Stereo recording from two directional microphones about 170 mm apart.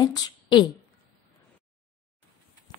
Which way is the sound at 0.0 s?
25° left (ahead or behind).